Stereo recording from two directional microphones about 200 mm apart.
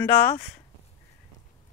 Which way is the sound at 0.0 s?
10° left (ahead or behind).